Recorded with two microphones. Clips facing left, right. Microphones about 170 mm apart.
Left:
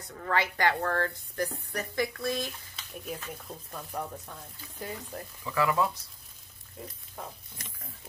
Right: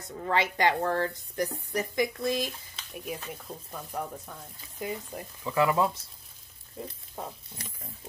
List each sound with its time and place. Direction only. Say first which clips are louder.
0.1 s a woman's voice: right 2 dB; 20° right (ahead or behind)
5.4 s a woman's voice: right 2 dB; 25° right (ahead or behind)
6.8 s sizzle: right 4 dB; 30° right (ahead or behind)
7.2 s a woman's voice: right 3 dB; 20° right (ahead or behind)